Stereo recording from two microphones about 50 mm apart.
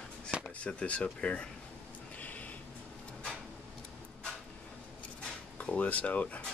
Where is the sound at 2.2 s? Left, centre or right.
Left.